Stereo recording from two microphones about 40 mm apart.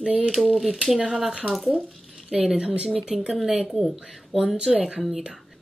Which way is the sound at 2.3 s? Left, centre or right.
Centre.